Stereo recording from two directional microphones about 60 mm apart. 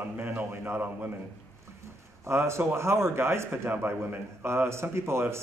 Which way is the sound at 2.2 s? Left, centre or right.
Right.